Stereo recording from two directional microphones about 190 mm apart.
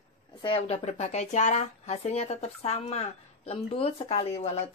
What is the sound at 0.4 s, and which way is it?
Speech, 30° left (ahead or behind).